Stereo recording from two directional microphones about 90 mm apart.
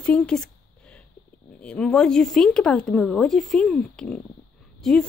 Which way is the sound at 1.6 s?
10° left (ahead or behind).